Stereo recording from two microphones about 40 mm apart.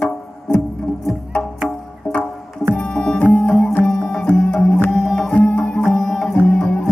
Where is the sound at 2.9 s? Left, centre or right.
Left.